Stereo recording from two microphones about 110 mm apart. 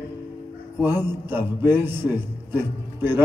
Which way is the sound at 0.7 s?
20° right (ahead or behind).